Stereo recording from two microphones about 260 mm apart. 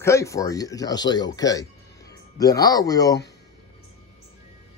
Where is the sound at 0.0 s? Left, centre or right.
Centre.